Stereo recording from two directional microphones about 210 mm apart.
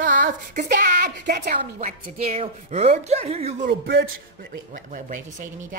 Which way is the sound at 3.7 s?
50° right (ahead or behind).